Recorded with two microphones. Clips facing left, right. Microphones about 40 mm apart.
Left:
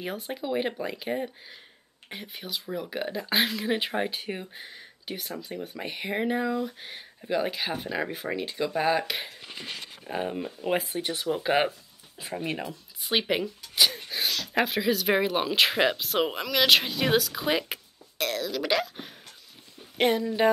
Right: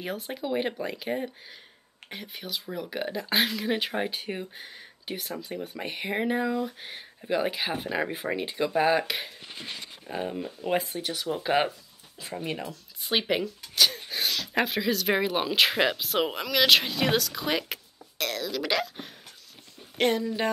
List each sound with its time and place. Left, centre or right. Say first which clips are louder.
0.0 s speech: even; centre
10.0 s speech: left 1 dB; centre
13.0 s speech: even; centre